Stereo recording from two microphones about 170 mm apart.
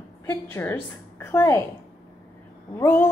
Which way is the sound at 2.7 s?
15° left (ahead or behind).